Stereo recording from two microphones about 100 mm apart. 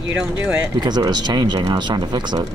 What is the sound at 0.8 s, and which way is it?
Speech, 45° right (ahead or behind).